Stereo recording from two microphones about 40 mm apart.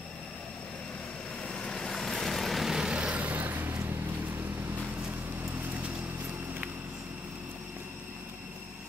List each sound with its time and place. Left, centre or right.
1.4 s vehicle: centre
2.6 s vehicle: centre
3.3 s a sound: right